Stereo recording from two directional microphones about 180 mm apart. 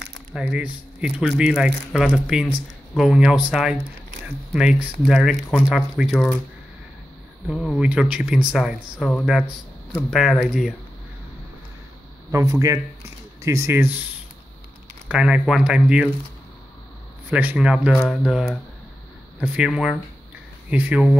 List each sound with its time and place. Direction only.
0.3 s speech: 5° right (ahead or behind)
5.0 s speech: centre (ahead or behind)
7.4 s speech: 5° right (ahead or behind)
12.3 s speech: 20° right (ahead or behind)
15.0 s speech: 5° right (ahead or behind)
17.3 s speech: 10° right (ahead or behind)